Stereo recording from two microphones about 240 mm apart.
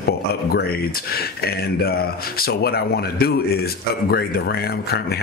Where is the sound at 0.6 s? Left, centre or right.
Left.